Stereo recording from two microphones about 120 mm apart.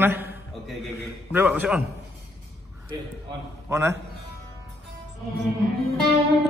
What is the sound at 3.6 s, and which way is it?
Speech, 20° right (ahead or behind).